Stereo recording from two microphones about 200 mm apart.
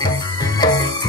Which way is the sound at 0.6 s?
20° left (ahead or behind).